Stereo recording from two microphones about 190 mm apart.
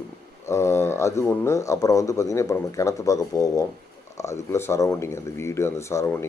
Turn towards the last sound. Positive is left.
turn(degrees=15)  # may be behind; listen again after turning